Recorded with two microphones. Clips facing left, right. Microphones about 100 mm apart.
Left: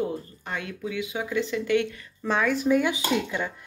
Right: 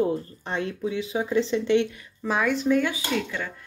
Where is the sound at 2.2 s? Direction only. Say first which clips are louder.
Even; 5° right (ahead or behind); by 3.5 s 15° left (ahead or behind).